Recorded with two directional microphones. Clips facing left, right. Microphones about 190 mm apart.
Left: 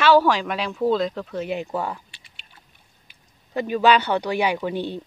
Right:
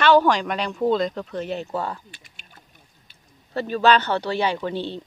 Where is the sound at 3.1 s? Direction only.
15° left (ahead or behind).